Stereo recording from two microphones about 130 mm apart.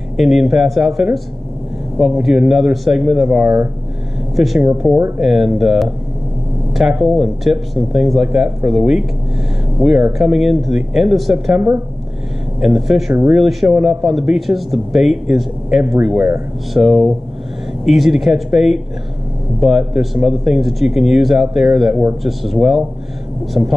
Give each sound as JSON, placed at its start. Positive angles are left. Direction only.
{"t": 0.2, "sound": "speech", "side_deg": -5}
{"t": 4.6, "sound": "speech", "side_deg": -20}
{"t": 5.2, "sound": "speech", "side_deg": 0}
{"t": 23.6, "sound": "speech", "side_deg": -15}